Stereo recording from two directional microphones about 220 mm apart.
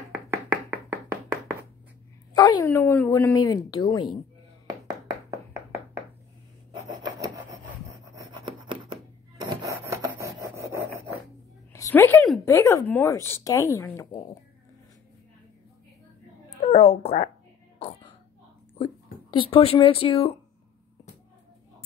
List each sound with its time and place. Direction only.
0.3 s chopping: 10° right (ahead or behind)
2.3 s speech: 15° left (ahead or behind)
6.8 s rub: 20° right (ahead or behind)
8.1 s writing: 20° right (ahead or behind)
9.5 s rub: 15° right (ahead or behind)
11.7 s speech: 10° left (ahead or behind)
16.6 s speech: 25° left (ahead or behind)
17.7 s a sound: 25° left (ahead or behind)
19.3 s speech: 25° left (ahead or behind)